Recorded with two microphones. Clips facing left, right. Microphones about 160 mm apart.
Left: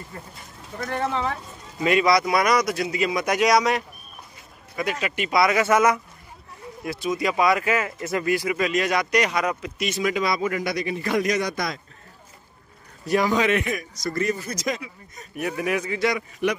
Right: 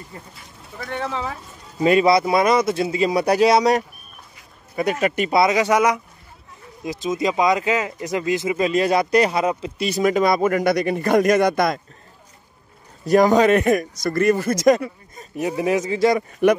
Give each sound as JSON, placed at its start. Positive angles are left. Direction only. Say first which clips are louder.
{"t": 0.7, "sound": "speech", "louder": "left 1 dB", "side_deg": 0}
{"t": 1.8, "sound": "speech", "louder": "right 4 dB", "side_deg": -35}
{"t": 4.9, "sound": "speech", "louder": "right 7 dB", "side_deg": -40}
{"t": 5.3, "sound": "speech", "louder": "right 1 dB", "side_deg": -20}
{"t": 13.0, "sound": "speech", "louder": "right 7 dB", "side_deg": -40}
{"t": 15.1, "sound": "speech", "louder": "right 4 dB", "side_deg": -25}
{"t": 16.0, "sound": "speech", "louder": "right 7 dB", "side_deg": -40}